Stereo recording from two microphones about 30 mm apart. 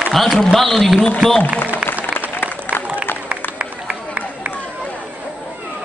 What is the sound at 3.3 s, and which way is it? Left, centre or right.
Run, right.